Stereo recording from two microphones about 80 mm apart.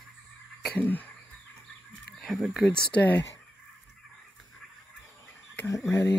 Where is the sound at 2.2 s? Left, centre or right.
Centre.